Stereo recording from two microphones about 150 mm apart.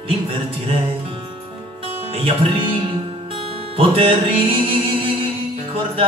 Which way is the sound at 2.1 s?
35° right (ahead or behind).